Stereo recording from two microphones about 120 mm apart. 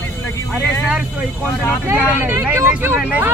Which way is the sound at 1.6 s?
15° right (ahead or behind).